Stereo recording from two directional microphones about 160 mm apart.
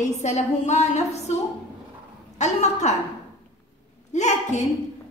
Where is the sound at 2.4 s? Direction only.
45° left (ahead or behind).